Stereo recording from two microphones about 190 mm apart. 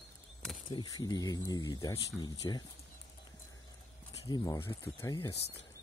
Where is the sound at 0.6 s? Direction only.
20° left (ahead or behind).